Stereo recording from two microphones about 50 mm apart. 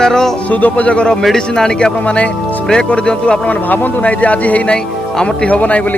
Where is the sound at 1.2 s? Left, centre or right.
Centre.